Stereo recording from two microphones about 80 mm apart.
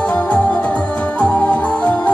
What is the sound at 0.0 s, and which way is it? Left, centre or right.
Music, centre.